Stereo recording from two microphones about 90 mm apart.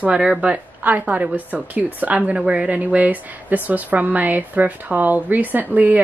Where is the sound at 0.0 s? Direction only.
10° right (ahead or behind).